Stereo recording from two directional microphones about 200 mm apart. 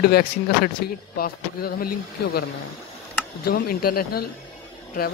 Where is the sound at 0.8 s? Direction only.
50° left (ahead or behind).